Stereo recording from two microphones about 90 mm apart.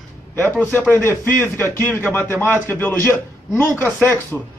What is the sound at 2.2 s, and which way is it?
A man's voice, 25° left (ahead or behind).